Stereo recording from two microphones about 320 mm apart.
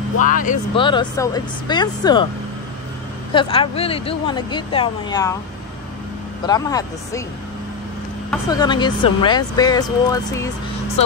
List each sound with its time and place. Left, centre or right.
0.2 s speech: left
3.3 s speech: centre
6.4 s speech: centre
8.3 s speech: centre